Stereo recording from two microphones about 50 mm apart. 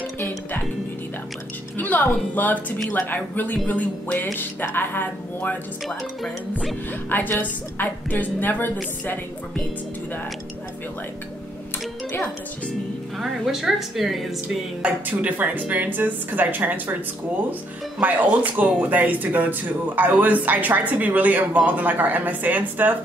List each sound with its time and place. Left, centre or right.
1.8 s a woman's voice: left
6.9 s speech: left
13.2 s a woman's voice: centre
14.8 s speech: right
18.0 s speech: right